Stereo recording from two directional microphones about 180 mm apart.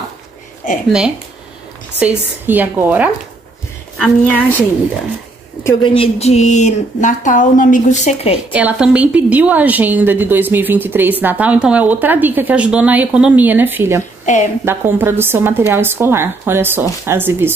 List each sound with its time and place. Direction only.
2.0 s a woman's voice: 10° right (ahead or behind)
4.0 s a woman's voice: 10° left (ahead or behind)
5.9 s speech: 35° left (ahead or behind)
8.5 s a woman's voice: 5° right (ahead or behind)
14.2 s a woman's voice: 45° left (ahead or behind)
14.6 s a woman's voice: 10° right (ahead or behind)